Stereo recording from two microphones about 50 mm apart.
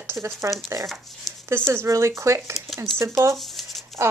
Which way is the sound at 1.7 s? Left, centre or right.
Right.